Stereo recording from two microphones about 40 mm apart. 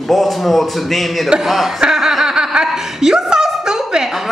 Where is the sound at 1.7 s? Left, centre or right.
Centre.